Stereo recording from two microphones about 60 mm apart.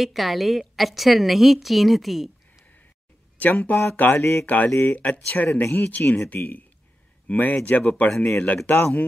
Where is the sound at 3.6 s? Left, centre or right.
Left.